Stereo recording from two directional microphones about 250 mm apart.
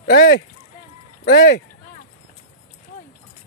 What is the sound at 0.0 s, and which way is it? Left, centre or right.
Speech, left.